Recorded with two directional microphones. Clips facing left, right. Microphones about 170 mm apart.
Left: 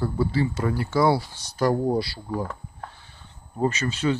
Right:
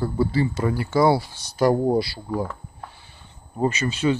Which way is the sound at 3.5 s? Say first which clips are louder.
Right 1 dB; 10° right (ahead or behind).